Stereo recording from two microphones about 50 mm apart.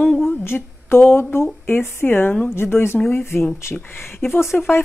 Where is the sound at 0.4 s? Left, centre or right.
Left.